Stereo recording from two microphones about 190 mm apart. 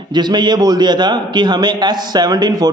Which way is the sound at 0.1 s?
25° right (ahead or behind).